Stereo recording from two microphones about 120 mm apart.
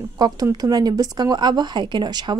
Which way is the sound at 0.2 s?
30° right (ahead or behind).